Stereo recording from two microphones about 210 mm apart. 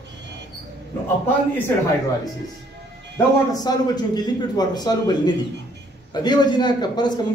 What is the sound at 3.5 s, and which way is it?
A man's voice, 20° left (ahead or behind).